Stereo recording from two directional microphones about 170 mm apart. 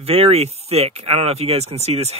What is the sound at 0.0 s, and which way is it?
Speech, 35° right (ahead or behind).